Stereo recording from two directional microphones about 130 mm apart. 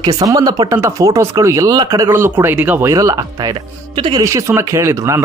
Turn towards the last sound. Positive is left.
turn(degrees=-20)  # may be behind; listen again after turning